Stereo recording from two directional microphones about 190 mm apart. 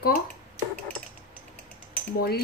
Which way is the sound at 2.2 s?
55° left (ahead or behind).